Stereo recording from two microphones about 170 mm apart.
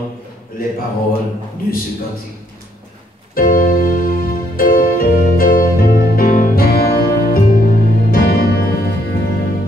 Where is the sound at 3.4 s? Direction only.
60° left (ahead or behind).